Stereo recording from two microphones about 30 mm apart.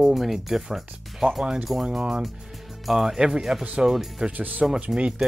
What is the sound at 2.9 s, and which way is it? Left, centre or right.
Speech, centre.